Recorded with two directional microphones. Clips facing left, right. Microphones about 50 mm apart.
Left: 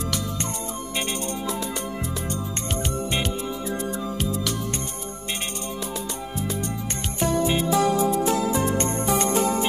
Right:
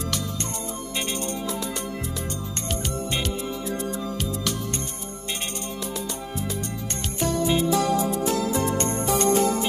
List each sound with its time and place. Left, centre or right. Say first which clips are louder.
2.2 s music: left 2 dB; centre
6.9 s music: left 1 dB; centre